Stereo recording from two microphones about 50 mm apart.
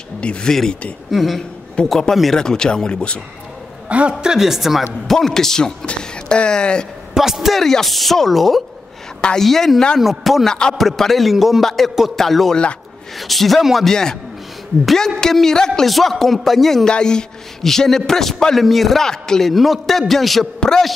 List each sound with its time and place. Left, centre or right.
0.2 s speech: left
0.5 s a man's voice: centre
4.2 s speech: centre
5.0 s a man's voice: centre
7.2 s a man's voice: centre
7.6 s a man's voice: centre
10.4 s a man's voice: centre
13.8 s a man's voice: centre
15.9 s a man's voice: centre
19.5 s a man's voice: centre